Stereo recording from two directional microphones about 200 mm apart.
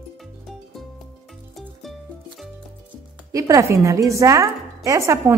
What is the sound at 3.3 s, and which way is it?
A woman's voice, 15° right (ahead or behind).